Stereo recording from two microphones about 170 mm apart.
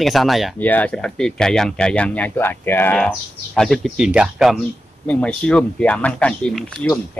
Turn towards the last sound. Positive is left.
turn(degrees=5)  # may be behind; listen again after turning